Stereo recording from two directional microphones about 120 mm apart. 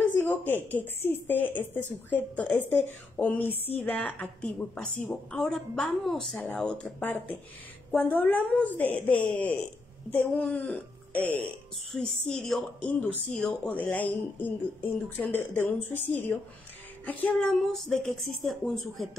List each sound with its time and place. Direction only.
0.2 s a sound: 15° left (ahead or behind)
0.7 s speech: 15° left (ahead or behind)
11.9 s speech: 5° left (ahead or behind)